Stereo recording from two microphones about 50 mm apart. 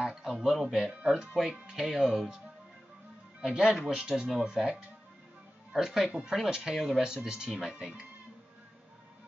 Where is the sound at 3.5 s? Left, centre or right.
Centre.